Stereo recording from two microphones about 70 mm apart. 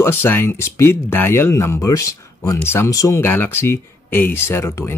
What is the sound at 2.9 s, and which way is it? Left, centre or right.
Speech, left.